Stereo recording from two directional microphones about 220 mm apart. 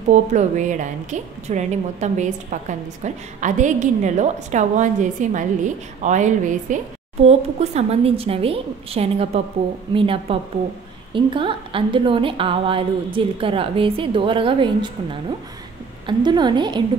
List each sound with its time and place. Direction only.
0.1 s a woman's voice: 35° right (ahead or behind)
16.1 s a woman's voice: 20° right (ahead or behind)